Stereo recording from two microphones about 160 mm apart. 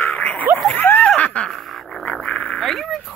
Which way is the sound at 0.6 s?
10° left (ahead or behind).